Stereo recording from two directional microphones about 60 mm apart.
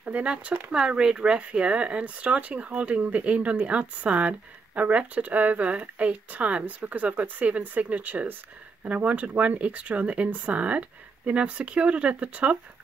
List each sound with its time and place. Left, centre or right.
0.0 s speech: right